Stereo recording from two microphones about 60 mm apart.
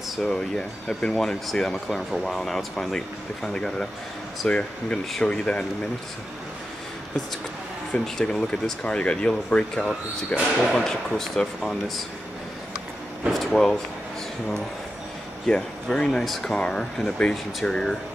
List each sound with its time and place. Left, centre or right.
0.2 s speech: centre
4.5 s speech: left
7.9 s speech: centre
10.7 s speech: centre
13.3 s speech: centre
15.4 s speech: centre